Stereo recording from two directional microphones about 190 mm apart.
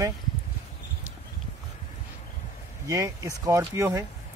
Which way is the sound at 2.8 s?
20° right (ahead or behind).